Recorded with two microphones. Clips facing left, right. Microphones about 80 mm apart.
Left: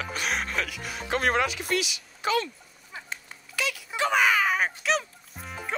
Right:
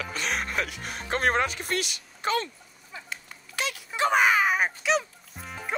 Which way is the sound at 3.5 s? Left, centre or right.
Right.